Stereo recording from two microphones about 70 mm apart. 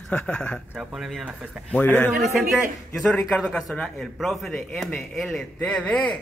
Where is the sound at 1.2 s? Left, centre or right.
Centre.